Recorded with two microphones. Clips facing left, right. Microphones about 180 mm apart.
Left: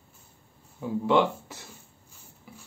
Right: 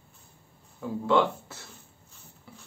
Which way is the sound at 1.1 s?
15° left (ahead or behind).